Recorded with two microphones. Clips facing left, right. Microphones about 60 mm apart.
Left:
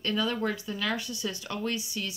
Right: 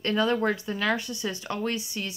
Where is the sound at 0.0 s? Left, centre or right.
Right.